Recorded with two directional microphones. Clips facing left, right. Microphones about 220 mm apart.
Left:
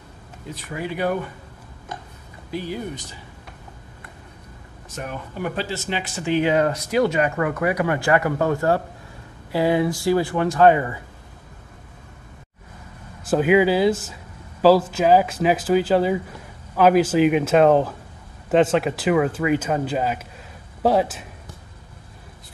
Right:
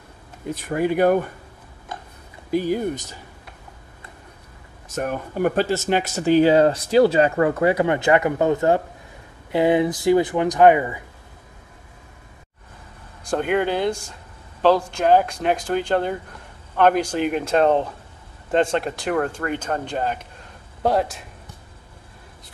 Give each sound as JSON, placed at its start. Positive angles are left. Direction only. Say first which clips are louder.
{"t": 0.7, "sound": "speech", "louder": "right 7 dB", "side_deg": -50}
{"t": 2.5, "sound": "speech", "louder": "right 7 dB", "side_deg": -45}
{"t": 4.8, "sound": "speech", "louder": "right 6 dB", "side_deg": -45}
{"t": 13.2, "sound": "speech", "louder": "left 4 dB", "side_deg": 5}